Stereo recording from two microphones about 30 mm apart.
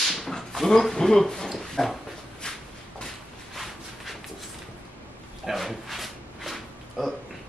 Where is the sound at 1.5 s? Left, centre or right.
Centre.